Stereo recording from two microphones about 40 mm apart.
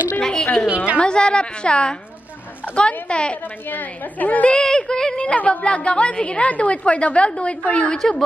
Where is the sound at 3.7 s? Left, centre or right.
Left.